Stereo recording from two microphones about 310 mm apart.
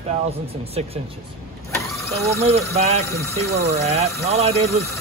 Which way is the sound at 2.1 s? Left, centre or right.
Centre.